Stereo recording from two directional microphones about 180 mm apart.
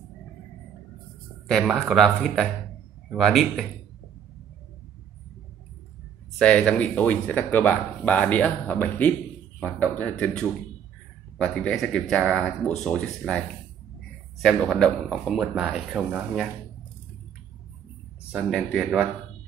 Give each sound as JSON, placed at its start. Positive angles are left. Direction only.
{"t": 1.5, "sound": "speech", "side_deg": 0}
{"t": 6.3, "sound": "speech", "side_deg": 5}
{"t": 14.4, "sound": "speech", "side_deg": 0}
{"t": 18.3, "sound": "speech", "side_deg": 0}